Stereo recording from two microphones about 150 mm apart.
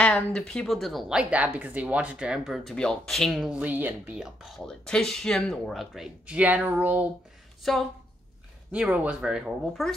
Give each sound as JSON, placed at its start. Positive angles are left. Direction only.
{"t": 0.0, "sound": "a woman's voice", "side_deg": 5}
{"t": 7.6, "sound": "a woman's voice", "side_deg": 0}